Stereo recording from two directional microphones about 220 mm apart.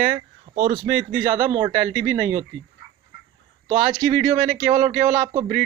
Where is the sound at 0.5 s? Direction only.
25° right (ahead or behind).